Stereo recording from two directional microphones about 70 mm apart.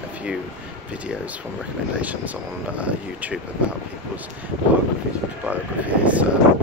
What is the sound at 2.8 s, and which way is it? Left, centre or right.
Speech, centre.